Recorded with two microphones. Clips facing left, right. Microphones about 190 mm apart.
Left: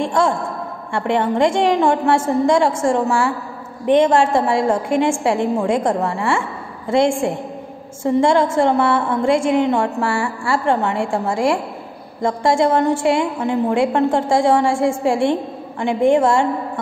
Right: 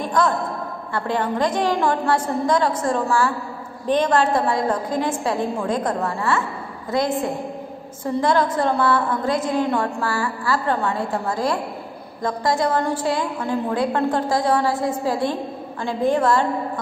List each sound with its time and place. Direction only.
0.0 s a man's voice: 25° left (ahead or behind)